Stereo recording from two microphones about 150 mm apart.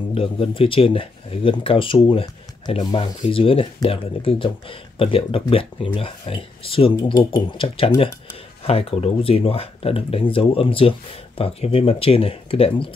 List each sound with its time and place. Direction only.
0.1 s speech: 40° left (ahead or behind)
7.0 s speech: 25° left (ahead or behind)